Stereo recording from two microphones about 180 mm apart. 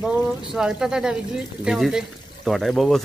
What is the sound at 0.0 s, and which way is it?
A man's voice, 5° right (ahead or behind).